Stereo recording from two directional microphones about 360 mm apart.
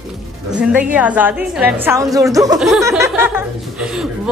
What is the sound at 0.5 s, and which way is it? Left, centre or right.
A woman's voice, centre.